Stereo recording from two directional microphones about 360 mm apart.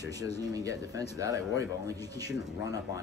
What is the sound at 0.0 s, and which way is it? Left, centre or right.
Speech, centre.